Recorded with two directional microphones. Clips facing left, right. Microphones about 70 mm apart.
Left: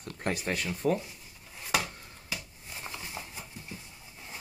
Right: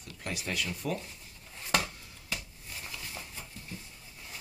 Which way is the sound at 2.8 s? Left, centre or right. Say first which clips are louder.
Left 3 dB; left.